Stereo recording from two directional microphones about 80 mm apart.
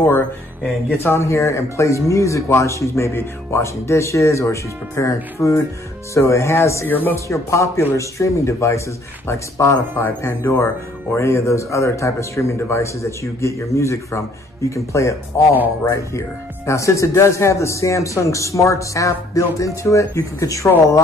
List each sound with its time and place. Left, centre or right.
0.9 s speech: left